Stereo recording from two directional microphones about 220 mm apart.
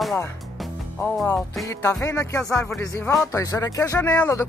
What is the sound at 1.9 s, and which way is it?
Speech, 10° left (ahead or behind).